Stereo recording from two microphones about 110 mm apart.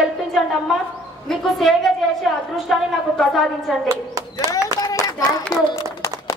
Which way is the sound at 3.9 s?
30° right (ahead or behind).